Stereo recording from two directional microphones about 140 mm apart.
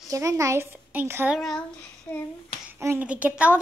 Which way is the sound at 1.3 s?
5° left (ahead or behind).